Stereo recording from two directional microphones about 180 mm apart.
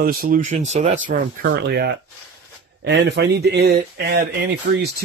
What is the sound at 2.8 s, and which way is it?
Speech, 70° right (ahead or behind).